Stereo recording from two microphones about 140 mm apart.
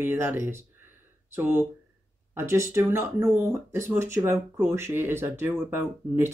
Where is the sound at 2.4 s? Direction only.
20° right (ahead or behind).